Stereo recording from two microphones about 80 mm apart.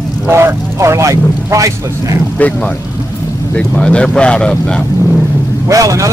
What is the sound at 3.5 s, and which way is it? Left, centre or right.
Speech, centre.